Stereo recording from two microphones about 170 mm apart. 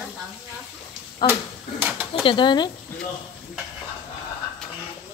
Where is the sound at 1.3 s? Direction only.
10° right (ahead or behind).